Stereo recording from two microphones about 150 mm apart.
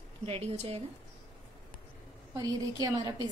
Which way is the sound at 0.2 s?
40° right (ahead or behind).